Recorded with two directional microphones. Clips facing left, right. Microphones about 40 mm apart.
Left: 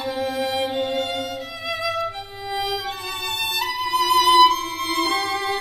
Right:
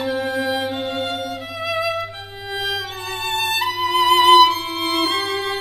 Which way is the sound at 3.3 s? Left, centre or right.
Right.